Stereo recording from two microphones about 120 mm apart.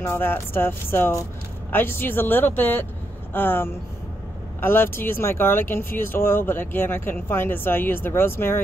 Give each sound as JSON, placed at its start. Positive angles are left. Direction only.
{"t": 0.0, "sound": "speech", "side_deg": 20}